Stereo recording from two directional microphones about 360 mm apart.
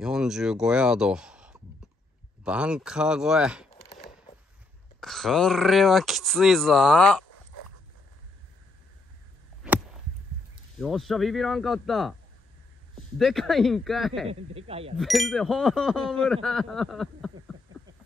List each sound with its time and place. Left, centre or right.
0.0 s speech: centre
3.7 s a sound: left
5.0 s speech: centre
9.6 s a sound: centre
10.8 s speech: centre
13.2 s speech: centre
14.2 s speech: centre
15.0 s speech: centre